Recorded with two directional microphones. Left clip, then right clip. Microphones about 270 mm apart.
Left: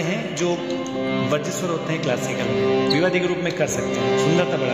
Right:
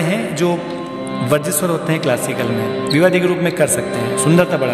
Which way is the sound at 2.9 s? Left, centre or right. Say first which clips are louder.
Right 7 dB; right.